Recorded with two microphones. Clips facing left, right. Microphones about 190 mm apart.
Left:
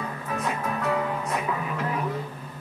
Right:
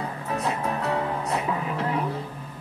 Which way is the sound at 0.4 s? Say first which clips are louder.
Right 1 dB; 30° right (ahead or behind).